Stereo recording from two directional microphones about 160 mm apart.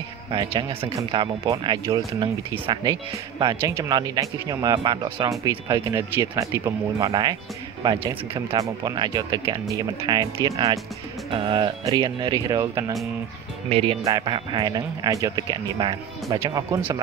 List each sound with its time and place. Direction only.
0.3 s speech: 30° right (ahead or behind)
8.5 s speech: 25° right (ahead or behind)
11.2 s speech: 30° right (ahead or behind)
13.7 s speech: 35° right (ahead or behind)
14.0 s speech: 25° right (ahead or behind)